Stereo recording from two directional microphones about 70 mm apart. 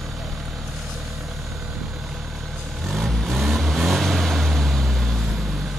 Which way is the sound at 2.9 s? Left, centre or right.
Centre.